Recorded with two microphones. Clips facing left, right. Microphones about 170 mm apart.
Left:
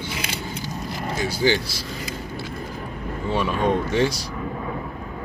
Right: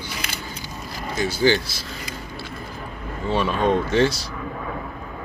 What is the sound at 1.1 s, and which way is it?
Speech, 10° left (ahead or behind).